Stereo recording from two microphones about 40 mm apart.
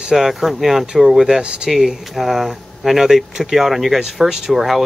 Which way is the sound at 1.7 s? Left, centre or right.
Centre.